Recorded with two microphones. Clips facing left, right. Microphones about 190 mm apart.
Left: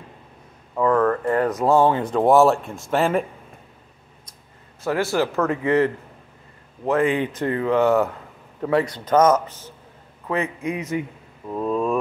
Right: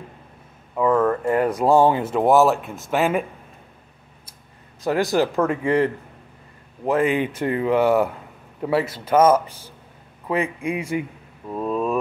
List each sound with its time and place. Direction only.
0.7 s speech: 10° right (ahead or behind)
4.8 s speech: 15° right (ahead or behind)
5.4 s speech: 30° right (ahead or behind)
7.2 s speech: 10° right (ahead or behind)